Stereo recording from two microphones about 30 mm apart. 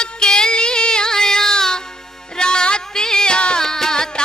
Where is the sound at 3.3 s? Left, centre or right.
Left.